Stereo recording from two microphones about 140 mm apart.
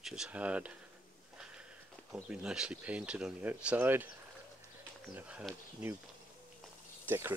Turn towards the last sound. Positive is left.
turn(degrees=-15)  # may be behind; listen again after turning